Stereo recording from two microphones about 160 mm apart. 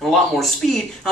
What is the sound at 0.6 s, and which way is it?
Speech, centre (ahead or behind).